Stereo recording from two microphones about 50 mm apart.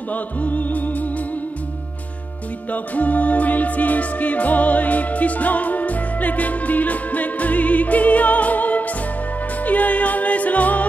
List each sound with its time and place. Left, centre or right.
0.1 s music: left
2.7 s music: left